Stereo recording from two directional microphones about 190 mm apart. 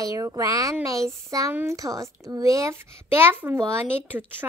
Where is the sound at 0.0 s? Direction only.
20° right (ahead or behind).